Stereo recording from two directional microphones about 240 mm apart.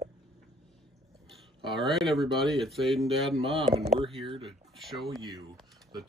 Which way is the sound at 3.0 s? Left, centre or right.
Right.